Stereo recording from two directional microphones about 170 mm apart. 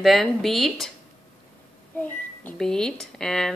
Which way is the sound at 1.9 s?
10° left (ahead or behind).